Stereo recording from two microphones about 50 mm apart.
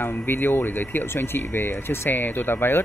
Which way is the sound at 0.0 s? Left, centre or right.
Left.